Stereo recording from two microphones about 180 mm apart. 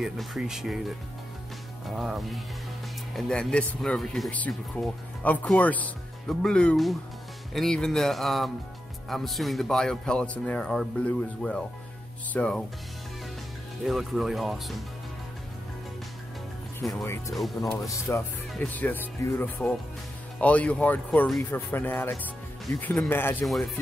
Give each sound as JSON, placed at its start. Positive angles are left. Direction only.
{"t": 0.0, "sound": "speech", "side_deg": 0}
{"t": 2.0, "sound": "speech", "side_deg": 0}
{"t": 13.8, "sound": "speech", "side_deg": 0}
{"t": 16.8, "sound": "speech", "side_deg": 0}
{"t": 17.8, "sound": "speech", "side_deg": 15}
{"t": 23.4, "sound": "speech", "side_deg": 0}